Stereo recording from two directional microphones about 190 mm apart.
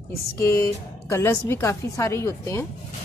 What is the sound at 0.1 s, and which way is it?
A woman's voice, 15° left (ahead or behind).